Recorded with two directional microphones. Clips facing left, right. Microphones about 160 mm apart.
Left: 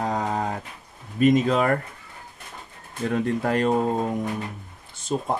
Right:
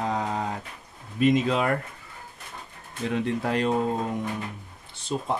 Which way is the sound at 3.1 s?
45° left (ahead or behind).